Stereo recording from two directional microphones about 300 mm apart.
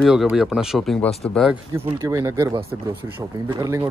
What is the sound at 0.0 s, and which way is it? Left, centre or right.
Speech, centre.